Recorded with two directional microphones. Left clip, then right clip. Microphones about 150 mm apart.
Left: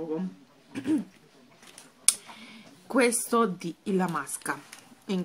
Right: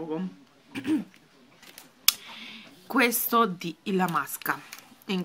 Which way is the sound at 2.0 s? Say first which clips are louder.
Right 4 dB; 10° right (ahead or behind).